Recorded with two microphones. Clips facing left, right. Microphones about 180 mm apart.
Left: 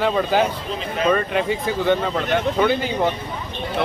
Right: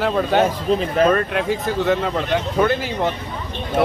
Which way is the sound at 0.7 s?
45° right (ahead or behind).